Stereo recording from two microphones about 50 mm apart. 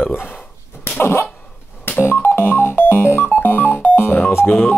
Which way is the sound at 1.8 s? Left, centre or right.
Left.